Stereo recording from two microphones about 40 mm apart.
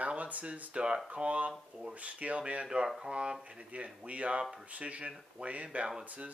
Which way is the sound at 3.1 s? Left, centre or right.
Right.